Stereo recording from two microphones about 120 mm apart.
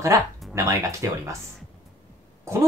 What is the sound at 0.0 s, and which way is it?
Speech, 25° right (ahead or behind).